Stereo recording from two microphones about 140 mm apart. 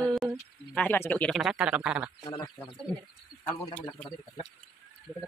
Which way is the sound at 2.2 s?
25° left (ahead or behind).